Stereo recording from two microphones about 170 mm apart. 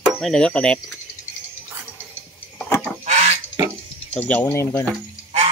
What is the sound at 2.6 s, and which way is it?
Chicken, 10° left (ahead or behind).